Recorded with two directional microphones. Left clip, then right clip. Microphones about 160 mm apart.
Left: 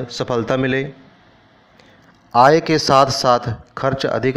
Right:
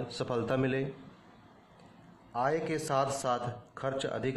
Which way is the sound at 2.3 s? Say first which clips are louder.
Left 19 dB; 45° left (ahead or behind).